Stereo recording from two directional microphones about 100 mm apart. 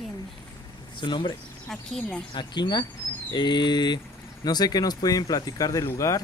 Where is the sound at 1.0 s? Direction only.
55° left (ahead or behind).